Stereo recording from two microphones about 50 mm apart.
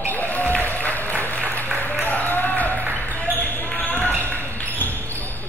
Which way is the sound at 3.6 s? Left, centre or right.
Left.